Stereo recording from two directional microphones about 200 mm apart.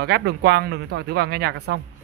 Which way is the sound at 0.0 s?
55° right (ahead or behind).